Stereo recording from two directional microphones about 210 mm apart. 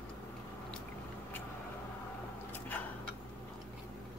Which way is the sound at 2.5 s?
10° left (ahead or behind).